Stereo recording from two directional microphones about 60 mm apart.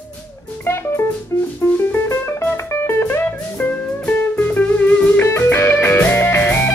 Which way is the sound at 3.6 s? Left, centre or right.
Left.